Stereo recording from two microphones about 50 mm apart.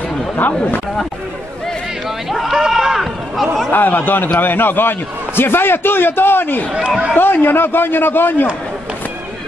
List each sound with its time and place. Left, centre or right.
0.4 s speech: left
2.5 s a sound: centre
3.3 s speech: centre
3.7 s a man's voice: left